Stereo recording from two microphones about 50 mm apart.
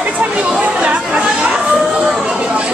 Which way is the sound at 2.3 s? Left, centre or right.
Right.